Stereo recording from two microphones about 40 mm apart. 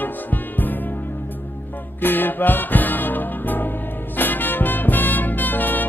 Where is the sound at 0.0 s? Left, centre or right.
Left.